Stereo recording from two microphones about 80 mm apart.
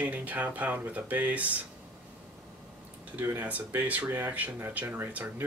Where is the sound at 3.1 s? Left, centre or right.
Right.